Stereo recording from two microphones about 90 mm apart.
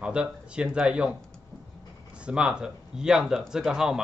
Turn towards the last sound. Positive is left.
turn(degrees=-5)  # may be behind; listen again after turning